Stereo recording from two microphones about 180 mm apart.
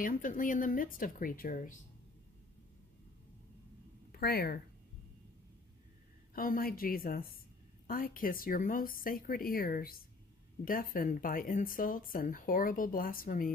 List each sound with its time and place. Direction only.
0.0 s speech: 50° left (ahead or behind)
4.1 s speech: 60° left (ahead or behind)
6.3 s a woman's voice: 50° left (ahead or behind)